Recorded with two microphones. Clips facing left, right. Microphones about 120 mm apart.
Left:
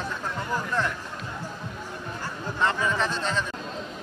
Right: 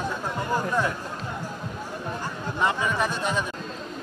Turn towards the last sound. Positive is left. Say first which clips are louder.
# right 1 dB
turn(degrees=-10)  # may be behind; listen again after turning